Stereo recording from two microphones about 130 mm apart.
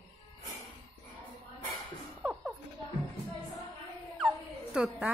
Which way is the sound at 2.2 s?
5° right (ahead or behind).